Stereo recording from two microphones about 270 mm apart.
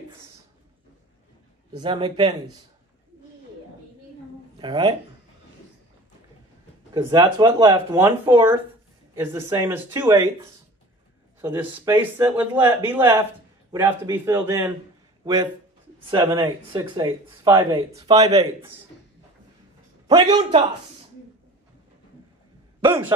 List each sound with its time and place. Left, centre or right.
1.7 s speech: centre
4.6 s speech: centre
6.9 s speech: centre
20.1 s speech: centre
22.8 s speech: centre